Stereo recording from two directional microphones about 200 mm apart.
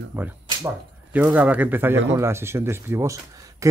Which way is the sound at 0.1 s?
10° right (ahead or behind).